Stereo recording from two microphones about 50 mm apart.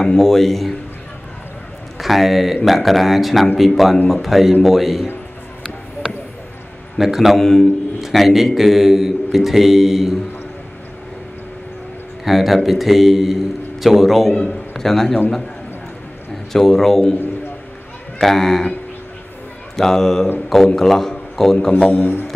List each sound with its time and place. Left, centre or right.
0.0 s a man's voice: centre
2.0 s a man's voice: centre
7.0 s a man's voice: centre
7.3 s a man's voice: centre
8.0 s a man's voice: centre
12.3 s a man's voice: centre
14.3 s a man's voice: centre
16.5 s a man's voice: centre
18.2 s a man's voice: centre
19.8 s a man's voice: centre
22.0 s music: left